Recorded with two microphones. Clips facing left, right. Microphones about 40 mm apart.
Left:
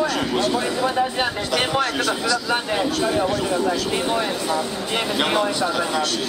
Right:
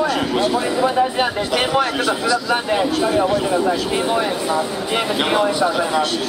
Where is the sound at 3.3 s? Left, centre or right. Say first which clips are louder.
Right 4 dB; centre.